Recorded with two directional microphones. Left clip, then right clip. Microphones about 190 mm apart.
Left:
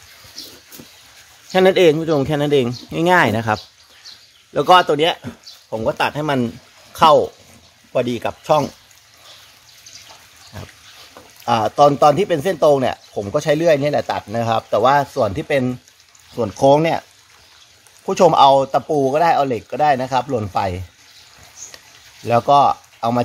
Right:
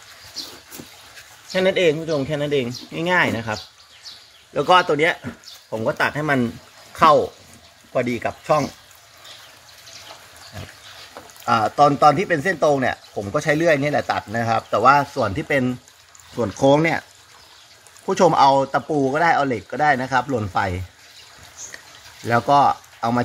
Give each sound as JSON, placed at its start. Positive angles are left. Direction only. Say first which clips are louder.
{"t": 1.5, "sound": "speech", "louder": "left 5 dB", "side_deg": 45}
{"t": 4.6, "sound": "speech", "louder": "left 3 dB", "side_deg": 25}
{"t": 11.4, "sound": "speech", "louder": "left 2 dB", "side_deg": 20}
{"t": 18.1, "sound": "speech", "louder": "left 4 dB", "side_deg": 15}
{"t": 21.7, "sound": "a sound", "louder": "right 2 dB", "side_deg": 15}